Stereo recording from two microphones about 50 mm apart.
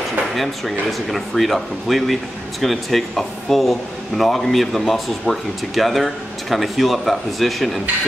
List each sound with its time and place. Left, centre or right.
0.4 s speech: centre